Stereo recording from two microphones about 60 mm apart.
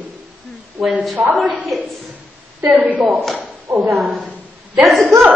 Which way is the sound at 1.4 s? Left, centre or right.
Centre.